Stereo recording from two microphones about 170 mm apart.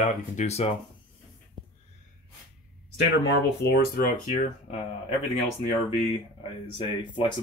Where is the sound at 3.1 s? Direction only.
85° left; by 4.4 s 60° left (ahead or behind).